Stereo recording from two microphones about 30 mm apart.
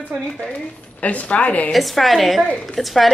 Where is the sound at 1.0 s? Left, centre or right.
Left.